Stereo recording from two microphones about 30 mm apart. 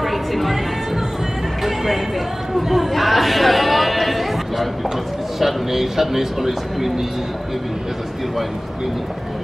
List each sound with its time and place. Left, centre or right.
0.0 s music: centre
2.5 s chatter: centre
5.4 s a man's voice: centre